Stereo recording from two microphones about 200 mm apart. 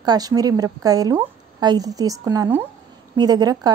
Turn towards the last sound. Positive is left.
turn(degrees=-20)  # may be behind; listen again after turning